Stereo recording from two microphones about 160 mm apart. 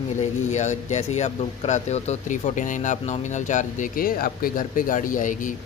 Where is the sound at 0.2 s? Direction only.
50° left (ahead or behind).